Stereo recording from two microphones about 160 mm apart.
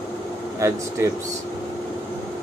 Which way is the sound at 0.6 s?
20° right (ahead or behind).